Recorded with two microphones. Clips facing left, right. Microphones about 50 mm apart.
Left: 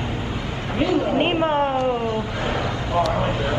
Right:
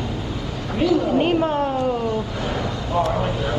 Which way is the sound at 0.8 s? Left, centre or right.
Left.